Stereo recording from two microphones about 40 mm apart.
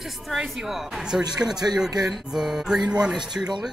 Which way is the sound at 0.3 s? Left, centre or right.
Centre.